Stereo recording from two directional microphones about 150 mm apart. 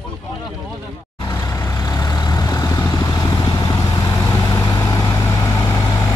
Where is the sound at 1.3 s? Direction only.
20° left (ahead or behind).